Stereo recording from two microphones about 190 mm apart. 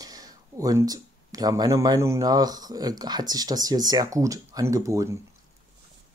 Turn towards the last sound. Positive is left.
turn(degrees=-15)  # may be behind; listen again after turning